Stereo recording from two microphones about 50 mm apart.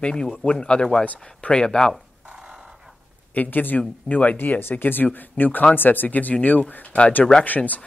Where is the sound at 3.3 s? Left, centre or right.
Left.